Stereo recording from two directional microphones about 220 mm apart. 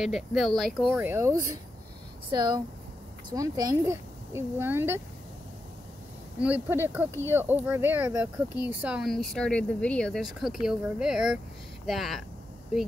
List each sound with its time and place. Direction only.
0.0 s speech: centre (ahead or behind)
6.4 s speech: 10° right (ahead or behind)